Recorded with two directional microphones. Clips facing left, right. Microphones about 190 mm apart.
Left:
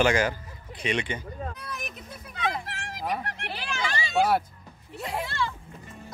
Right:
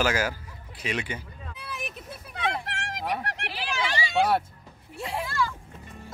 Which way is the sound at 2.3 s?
70° right (ahead or behind).